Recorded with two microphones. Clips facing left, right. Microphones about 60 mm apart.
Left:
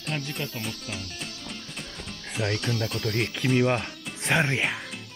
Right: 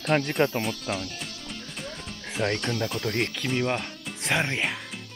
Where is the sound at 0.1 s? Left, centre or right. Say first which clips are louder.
Right 10 dB; right.